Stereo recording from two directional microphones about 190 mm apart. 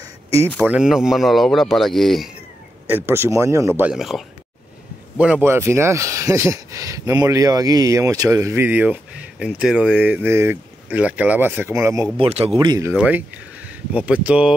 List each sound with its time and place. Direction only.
0.0 s a sound: 15° right (ahead or behind)
0.7 s speech: 5° right (ahead or behind)
2.9 s speech: 15° right (ahead or behind)
12.2 s a man's voice: 30° right (ahead or behind)
12.9 s speech: 5° right (ahead or behind)